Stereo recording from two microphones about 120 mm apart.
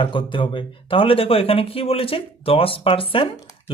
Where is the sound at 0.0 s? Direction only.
45° left (ahead or behind).